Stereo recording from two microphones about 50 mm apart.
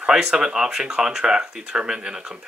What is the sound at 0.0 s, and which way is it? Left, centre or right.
Speech, centre.